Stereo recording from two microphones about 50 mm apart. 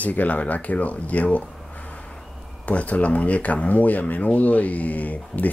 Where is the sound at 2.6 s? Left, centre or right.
Left.